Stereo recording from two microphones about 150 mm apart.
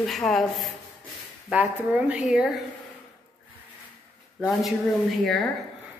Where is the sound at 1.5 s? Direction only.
10° right (ahead or behind).